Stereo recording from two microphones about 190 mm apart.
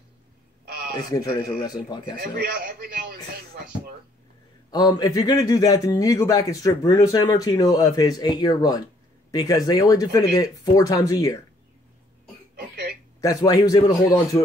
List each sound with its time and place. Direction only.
0.7 s radio: 55° right (ahead or behind)
0.9 s a man's voice: 20° left (ahead or behind)
2.1 s a sound: 50° right (ahead or behind)
4.6 s a man's voice: 20° left (ahead or behind)
12.5 s cough: 55° right (ahead or behind)
13.2 s a man's voice: 20° left (ahead or behind)